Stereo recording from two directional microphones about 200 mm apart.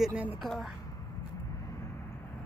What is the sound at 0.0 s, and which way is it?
Speech, 5° right (ahead or behind).